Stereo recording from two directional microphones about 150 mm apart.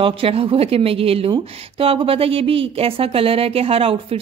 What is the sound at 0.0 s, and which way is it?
Speech, 35° right (ahead or behind).